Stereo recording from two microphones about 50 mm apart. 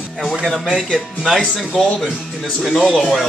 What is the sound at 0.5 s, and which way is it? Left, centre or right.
Speech, centre.